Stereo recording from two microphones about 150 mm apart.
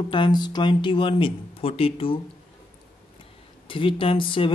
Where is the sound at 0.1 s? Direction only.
30° left (ahead or behind).